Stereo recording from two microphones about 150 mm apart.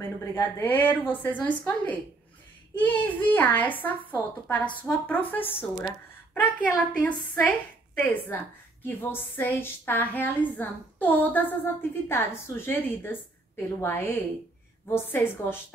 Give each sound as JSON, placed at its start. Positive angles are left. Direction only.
{"t": 0.0, "sound": "a woman's voice", "side_deg": 15}